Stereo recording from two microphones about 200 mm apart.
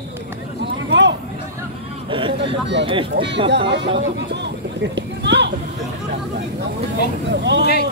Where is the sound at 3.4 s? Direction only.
60° right (ahead or behind).